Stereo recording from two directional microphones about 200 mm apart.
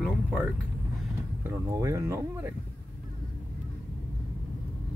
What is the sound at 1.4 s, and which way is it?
Speech, 15° right (ahead or behind).